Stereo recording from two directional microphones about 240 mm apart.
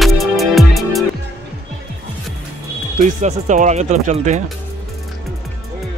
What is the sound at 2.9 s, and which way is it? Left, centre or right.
Speech, right.